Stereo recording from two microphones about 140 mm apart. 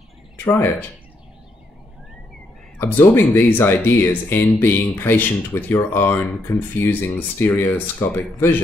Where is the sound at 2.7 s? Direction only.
15° left (ahead or behind).